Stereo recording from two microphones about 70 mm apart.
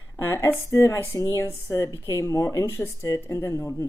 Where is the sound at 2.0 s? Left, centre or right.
Left.